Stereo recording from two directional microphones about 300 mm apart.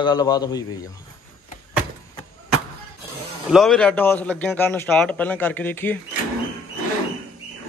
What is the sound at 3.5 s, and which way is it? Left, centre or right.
A man's voice, centre.